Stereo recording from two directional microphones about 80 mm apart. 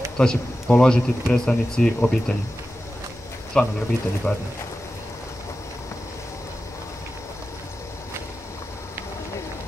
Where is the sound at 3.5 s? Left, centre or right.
Centre.